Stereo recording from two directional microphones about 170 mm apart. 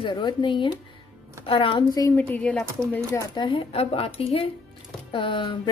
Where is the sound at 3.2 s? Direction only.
25° left (ahead or behind).